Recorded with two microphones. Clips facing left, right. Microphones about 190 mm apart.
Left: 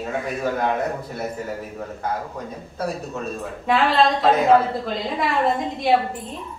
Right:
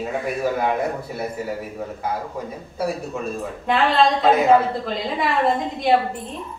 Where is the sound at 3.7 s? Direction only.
Centre (ahead or behind).